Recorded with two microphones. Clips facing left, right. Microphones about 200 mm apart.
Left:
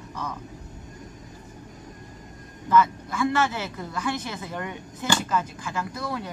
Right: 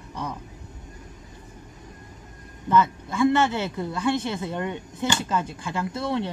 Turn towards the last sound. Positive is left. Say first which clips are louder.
# right 4 dB
turn(degrees=-25)  # may be behind; listen again after turning